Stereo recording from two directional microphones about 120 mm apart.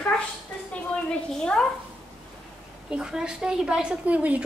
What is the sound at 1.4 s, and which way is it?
Speech, 5° left (ahead or behind).